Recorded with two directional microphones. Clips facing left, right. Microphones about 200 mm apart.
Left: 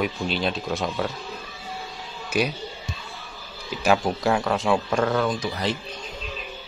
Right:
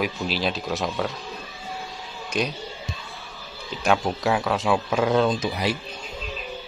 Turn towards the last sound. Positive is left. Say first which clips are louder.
# right 2 dB
turn(degrees=-15)  # may be behind; listen again after turning